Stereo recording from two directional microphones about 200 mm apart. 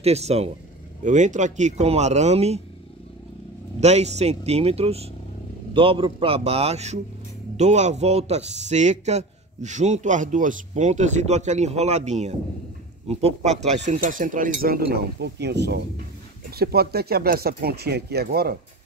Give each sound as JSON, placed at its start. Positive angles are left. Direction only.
{"t": 0.0, "sound": "a man's voice", "side_deg": -30}
{"t": 3.8, "sound": "a man's voice", "side_deg": -35}